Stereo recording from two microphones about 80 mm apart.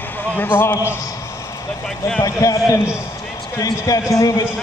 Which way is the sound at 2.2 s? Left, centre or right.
Left.